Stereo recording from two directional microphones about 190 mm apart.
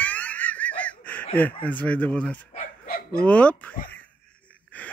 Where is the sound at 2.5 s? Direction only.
50° left (ahead or behind).